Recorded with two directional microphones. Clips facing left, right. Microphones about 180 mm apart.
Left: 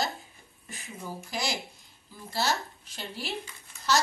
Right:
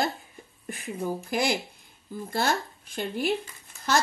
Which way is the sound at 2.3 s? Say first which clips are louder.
Right 3 dB; 55° right (ahead or behind).